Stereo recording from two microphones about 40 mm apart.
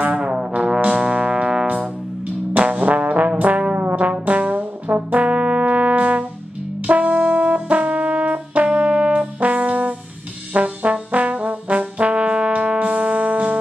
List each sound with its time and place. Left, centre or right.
0.0 s brass instrument: right
2.6 s trombone: right
3.8 s brass instrument: right
10.5 s trombone: right
12.7 s music: right